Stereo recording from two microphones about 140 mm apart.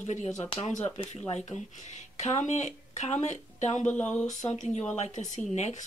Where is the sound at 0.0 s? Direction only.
55° left (ahead or behind).